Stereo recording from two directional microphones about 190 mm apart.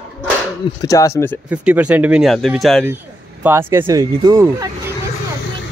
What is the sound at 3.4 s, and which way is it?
Speech, 10° right (ahead or behind).